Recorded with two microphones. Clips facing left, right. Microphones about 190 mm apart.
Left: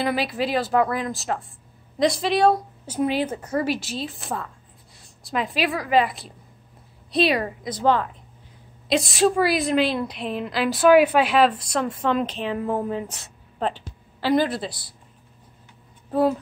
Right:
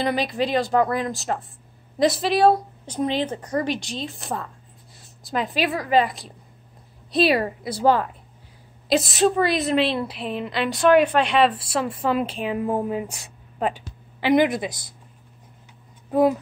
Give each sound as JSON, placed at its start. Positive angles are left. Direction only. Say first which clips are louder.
{"t": 0.0, "sound": "a woman's voice", "louder": "right 1 dB", "side_deg": 5}
{"t": 2.9, "sound": "a woman's voice", "louder": "left 1 dB", "side_deg": 10}
{"t": 16.1, "sound": "speech", "louder": "right 2 dB", "side_deg": -10}